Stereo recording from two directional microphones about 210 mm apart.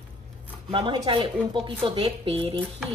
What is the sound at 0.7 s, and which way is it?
A woman's voice, 25° right (ahead or behind).